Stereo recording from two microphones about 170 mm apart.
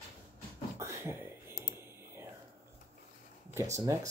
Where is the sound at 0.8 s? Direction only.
15° right (ahead or behind).